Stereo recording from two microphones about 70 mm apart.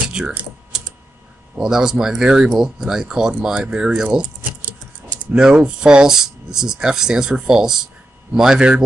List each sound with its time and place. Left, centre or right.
0.2 s speech: centre
1.6 s speech: centre
4.4 s keys jangling: right
5.3 s speech: centre